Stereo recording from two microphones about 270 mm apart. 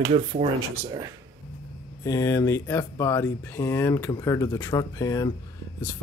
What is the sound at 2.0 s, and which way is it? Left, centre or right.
Speech, centre.